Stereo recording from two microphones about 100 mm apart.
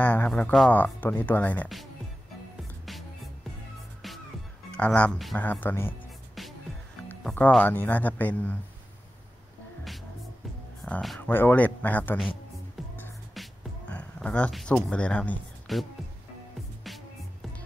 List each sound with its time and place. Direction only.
0.0 s speech: 15° left (ahead or behind)
4.7 s speech: 15° left (ahead or behind)
7.6 s speech: 20° left (ahead or behind)
10.8 s a sound: 5° left (ahead or behind)
11.1 s speech: 20° left (ahead or behind)
12.8 s music: centre (ahead or behind)
13.8 s music: 10° left (ahead or behind)
14.5 s speech: centre (ahead or behind)
15.6 s music: centre (ahead or behind)